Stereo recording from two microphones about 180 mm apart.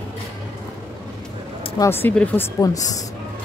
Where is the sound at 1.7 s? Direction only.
15° left (ahead or behind).